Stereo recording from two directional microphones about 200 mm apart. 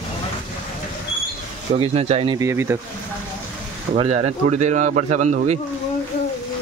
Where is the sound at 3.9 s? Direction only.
30° right (ahead or behind).